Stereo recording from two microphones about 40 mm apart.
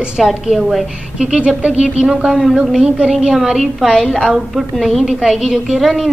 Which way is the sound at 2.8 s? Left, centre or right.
Centre.